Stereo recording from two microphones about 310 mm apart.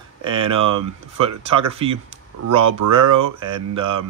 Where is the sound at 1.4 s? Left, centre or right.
Centre.